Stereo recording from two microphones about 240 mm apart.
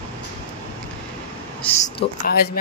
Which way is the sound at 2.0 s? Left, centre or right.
Left.